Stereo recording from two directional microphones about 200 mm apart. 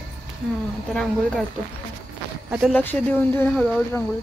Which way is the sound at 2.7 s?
10° left (ahead or behind).